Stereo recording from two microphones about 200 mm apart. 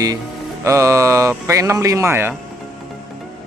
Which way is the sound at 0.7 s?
15° right (ahead or behind).